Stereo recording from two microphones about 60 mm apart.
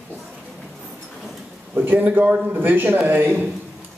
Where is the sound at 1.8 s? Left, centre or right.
Right.